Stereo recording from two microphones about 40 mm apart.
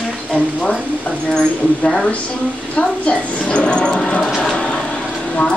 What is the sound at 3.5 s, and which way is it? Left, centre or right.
Speech, left.